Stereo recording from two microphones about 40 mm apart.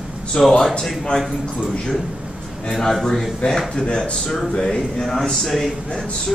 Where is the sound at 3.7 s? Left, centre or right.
Left.